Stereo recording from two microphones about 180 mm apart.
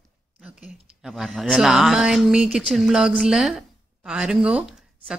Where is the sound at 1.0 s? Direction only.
Centre (ahead or behind).